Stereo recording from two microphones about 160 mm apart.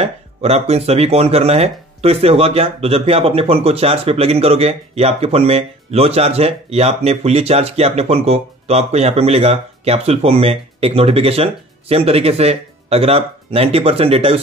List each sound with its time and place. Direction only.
0.0 s speech: 40° right (ahead or behind)